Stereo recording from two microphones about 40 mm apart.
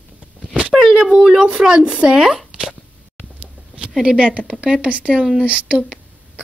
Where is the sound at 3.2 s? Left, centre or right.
Right.